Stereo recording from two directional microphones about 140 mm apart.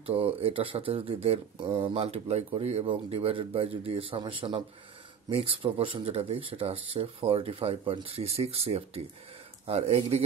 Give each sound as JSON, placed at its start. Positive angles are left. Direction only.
{"t": 0.0, "sound": "speech", "side_deg": -45}